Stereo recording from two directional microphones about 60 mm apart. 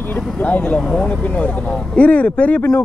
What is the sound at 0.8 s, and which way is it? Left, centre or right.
Speech, centre.